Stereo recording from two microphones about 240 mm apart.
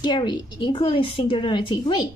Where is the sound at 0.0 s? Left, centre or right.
Centre.